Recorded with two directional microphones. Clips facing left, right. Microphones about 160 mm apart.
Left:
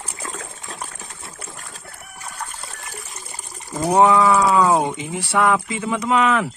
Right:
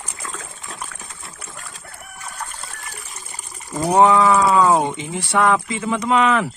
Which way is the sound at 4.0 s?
5° left (ahead or behind).